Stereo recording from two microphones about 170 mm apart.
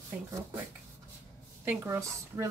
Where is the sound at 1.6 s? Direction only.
15° right (ahead or behind).